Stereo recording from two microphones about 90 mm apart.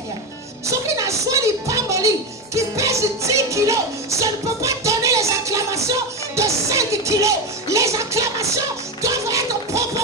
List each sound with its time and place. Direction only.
0.7 s music: 35° right (ahead or behind)